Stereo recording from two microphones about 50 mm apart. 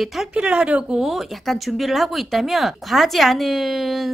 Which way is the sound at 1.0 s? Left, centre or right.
Centre.